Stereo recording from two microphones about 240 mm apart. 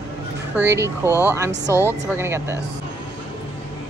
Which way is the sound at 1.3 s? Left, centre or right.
Centre.